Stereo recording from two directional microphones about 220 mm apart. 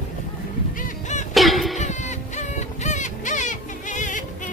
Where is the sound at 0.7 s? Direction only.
35° left (ahead or behind).